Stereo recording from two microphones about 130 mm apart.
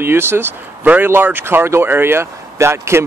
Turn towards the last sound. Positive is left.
turn(degrees=-20)  # may be behind; listen again after turning